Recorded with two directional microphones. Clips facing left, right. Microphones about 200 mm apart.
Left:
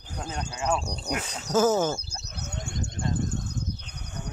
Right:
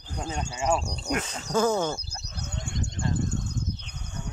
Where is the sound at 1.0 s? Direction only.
5° left (ahead or behind).